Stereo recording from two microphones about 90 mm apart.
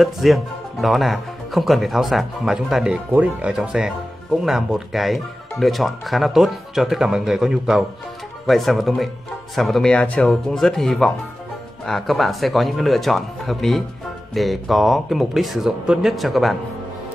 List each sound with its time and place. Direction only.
0.0 s speech: centre (ahead or behind)
9.9 s speech: 15° left (ahead or behind)
10.5 s speech: 5° left (ahead or behind)